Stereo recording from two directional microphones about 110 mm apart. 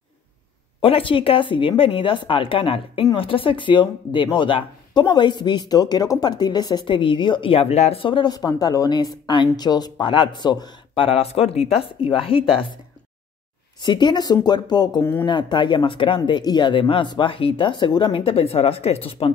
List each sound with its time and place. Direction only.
0.7 s speech: 55° left (ahead or behind)
8.0 s a woman's voice: 45° left (ahead or behind)
11.1 s speech: 60° left (ahead or behind)
13.7 s a woman's voice: 40° left (ahead or behind); by 19.3 s 60° left (ahead or behind)